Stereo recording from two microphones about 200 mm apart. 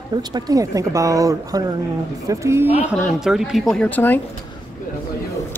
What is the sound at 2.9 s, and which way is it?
Speech, centre (ahead or behind).